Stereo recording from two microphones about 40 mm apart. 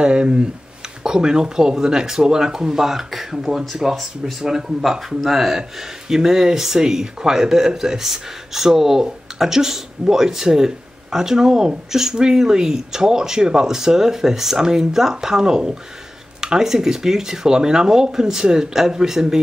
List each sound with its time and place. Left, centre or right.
0.0 s speech: right